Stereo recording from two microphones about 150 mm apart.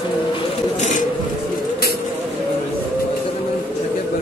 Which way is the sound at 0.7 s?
55° left (ahead or behind).